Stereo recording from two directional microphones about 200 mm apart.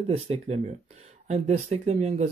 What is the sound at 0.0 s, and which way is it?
Speech, 30° right (ahead or behind).